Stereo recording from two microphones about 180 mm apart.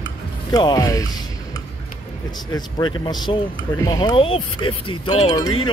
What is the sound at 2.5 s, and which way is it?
Speech, 25° left (ahead or behind).